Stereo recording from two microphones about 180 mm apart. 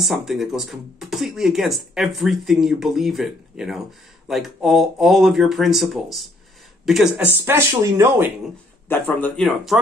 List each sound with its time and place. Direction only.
0.1 s speech: centre (ahead or behind)
7.4 s speech: 15° right (ahead or behind)
8.8 s speech: 10° left (ahead or behind)